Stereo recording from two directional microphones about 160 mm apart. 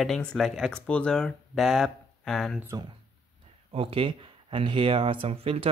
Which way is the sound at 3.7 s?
35° right (ahead or behind).